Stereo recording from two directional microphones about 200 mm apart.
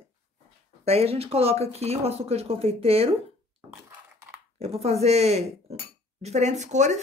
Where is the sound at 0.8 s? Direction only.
30° right (ahead or behind).